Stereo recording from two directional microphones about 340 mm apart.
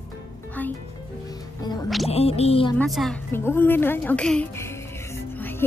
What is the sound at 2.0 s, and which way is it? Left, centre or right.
Speech, centre.